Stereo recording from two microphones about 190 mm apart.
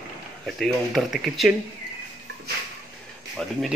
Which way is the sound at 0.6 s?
Centre (ahead or behind).